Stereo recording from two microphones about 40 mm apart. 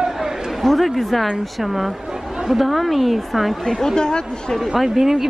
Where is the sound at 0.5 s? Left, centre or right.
Centre.